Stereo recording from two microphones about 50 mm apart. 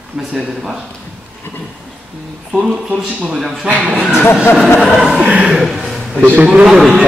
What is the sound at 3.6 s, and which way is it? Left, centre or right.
Speech, right.